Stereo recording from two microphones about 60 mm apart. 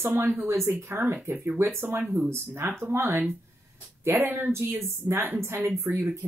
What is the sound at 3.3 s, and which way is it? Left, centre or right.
Speech, right.